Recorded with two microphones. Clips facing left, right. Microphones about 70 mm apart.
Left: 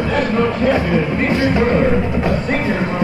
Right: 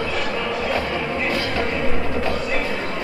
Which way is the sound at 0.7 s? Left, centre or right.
Left.